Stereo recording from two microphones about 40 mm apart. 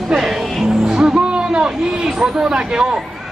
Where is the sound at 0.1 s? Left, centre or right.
Centre.